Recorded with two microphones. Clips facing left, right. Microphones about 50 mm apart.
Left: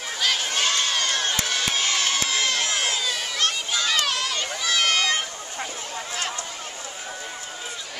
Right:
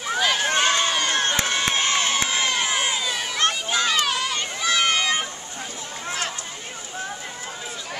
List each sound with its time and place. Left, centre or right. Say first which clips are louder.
0.2 s run: right 2 dB; centre
0.6 s crowd: right 3 dB; right
1.1 s crowd: right 3 dB; right; by 3.3 s centre
3.3 s a sound: right 4 dB; right
3.8 s a sound: right 1 dB; centre
4.4 s run: right 2 dB; right